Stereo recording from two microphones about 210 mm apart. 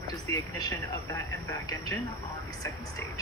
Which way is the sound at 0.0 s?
20° left (ahead or behind).